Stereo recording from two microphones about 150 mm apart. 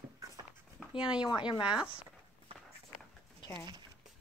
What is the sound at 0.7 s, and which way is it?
Speech, 5° right (ahead or behind).